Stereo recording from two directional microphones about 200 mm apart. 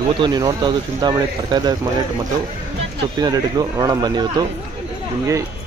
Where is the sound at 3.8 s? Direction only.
20° right (ahead or behind).